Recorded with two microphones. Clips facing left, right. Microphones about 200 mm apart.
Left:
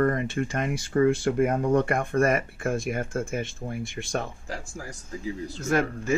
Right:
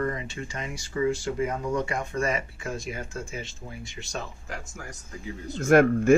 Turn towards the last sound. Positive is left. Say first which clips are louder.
# right 7 dB
turn(degrees=-55)  # may be behind; listen again after turning